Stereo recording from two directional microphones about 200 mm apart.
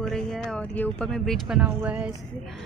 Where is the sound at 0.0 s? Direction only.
Centre (ahead or behind).